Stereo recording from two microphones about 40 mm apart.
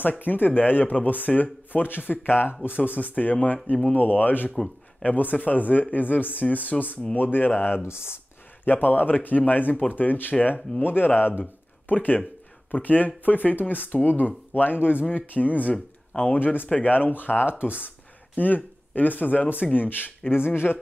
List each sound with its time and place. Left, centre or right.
0.2 s speech: left
8.6 s speech: left
11.9 s speech: left
15.0 s speech: left
16.3 s speech: left
20.2 s speech: left